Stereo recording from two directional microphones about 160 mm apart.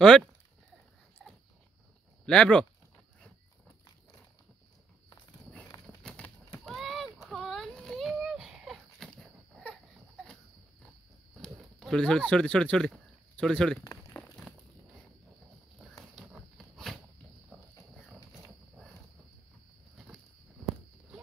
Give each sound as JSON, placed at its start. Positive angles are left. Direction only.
{"t": 0.0, "sound": "speech", "side_deg": 5}
{"t": 2.2, "sound": "speech", "side_deg": 5}
{"t": 6.0, "sound": "horse", "side_deg": 5}
{"t": 6.6, "sound": "a sound", "side_deg": 0}
{"t": 11.4, "sound": "speech", "side_deg": 0}
{"t": 13.8, "sound": "crumpling", "side_deg": 15}
{"t": 16.2, "sound": "a sound", "side_deg": 0}